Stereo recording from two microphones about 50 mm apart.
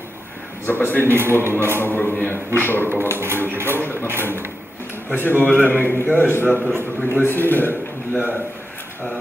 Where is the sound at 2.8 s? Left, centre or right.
Right.